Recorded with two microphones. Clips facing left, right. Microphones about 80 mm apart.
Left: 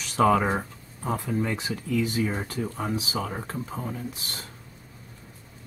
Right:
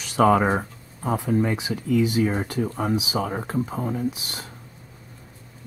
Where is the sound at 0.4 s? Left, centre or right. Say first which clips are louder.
Right 4 dB; centre.